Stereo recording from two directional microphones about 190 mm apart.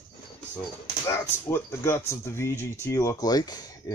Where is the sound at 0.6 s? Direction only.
15° left (ahead or behind).